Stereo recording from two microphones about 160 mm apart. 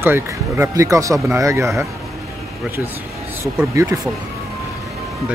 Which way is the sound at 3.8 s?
20° right (ahead or behind).